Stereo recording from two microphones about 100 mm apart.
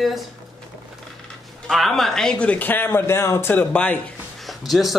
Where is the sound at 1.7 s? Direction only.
Centre (ahead or behind); by 4.0 s 15° left (ahead or behind).